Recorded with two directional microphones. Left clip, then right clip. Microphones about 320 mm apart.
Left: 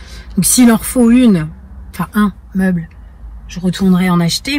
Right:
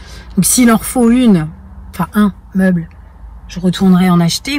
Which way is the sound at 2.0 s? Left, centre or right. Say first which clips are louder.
Right 1 dB; centre.